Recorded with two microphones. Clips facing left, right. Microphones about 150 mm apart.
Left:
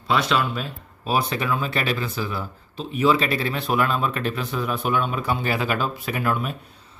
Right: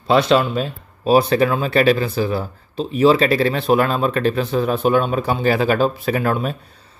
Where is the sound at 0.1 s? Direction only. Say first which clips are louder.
Right 7 dB; 30° right (ahead or behind).